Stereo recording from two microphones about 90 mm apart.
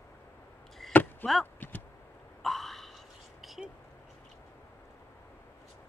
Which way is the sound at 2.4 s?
5° left (ahead or behind).